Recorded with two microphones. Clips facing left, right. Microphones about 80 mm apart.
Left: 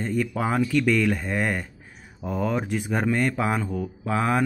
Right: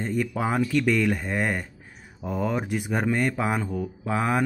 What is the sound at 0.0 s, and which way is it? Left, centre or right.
Speech, right.